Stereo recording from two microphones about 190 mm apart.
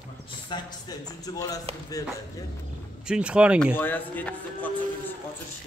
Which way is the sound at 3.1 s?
5° right (ahead or behind).